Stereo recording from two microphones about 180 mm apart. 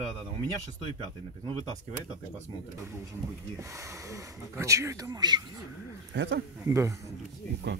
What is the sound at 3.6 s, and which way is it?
Speech, 15° right (ahead or behind).